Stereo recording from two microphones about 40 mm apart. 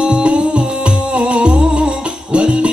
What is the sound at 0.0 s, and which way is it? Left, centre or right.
Music, right.